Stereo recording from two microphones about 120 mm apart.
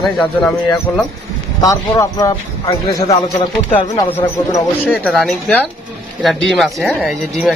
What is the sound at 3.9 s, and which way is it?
Speech, 20° left (ahead or behind).